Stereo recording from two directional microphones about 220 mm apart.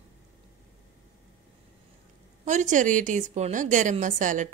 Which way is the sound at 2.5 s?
35° right (ahead or behind).